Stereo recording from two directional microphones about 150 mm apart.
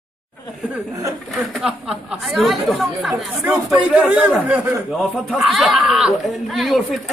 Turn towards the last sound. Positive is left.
turn(degrees=0)  # may be behind; listen again after turning